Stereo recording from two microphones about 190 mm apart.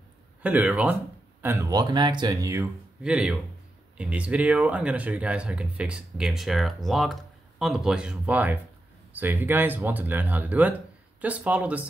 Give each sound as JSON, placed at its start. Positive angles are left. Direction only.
{"t": 0.4, "sound": "speech", "side_deg": -10}